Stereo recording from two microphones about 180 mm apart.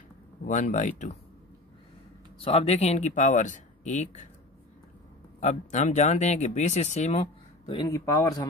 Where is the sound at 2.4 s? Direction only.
35° left (ahead or behind).